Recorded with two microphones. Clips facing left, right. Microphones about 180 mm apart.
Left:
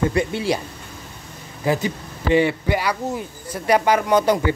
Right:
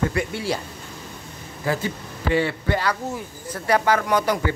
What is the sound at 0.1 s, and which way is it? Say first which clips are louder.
Speech: left 4 dB; 20° left (ahead or behind).